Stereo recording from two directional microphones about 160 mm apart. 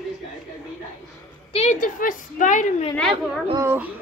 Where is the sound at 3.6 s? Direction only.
15° right (ahead or behind).